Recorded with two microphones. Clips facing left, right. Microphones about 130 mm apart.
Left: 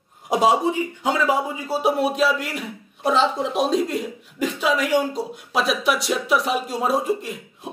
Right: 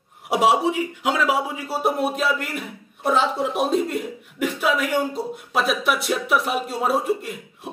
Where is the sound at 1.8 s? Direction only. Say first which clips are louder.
Left 3 dB; centre (ahead or behind).